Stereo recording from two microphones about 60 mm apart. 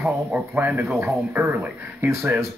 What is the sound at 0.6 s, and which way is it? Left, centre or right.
Speech, right.